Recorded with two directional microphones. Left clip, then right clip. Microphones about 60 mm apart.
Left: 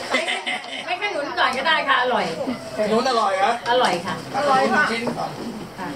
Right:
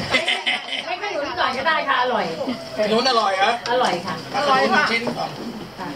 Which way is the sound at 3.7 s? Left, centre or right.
Left.